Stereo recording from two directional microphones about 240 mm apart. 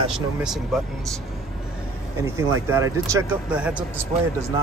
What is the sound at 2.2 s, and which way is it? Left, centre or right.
Speech, centre.